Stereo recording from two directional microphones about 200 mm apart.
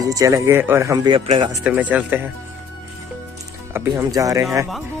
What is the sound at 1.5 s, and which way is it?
Speech, 10° right (ahead or behind).